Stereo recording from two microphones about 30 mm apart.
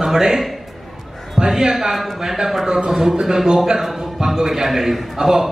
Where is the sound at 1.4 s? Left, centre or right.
Centre.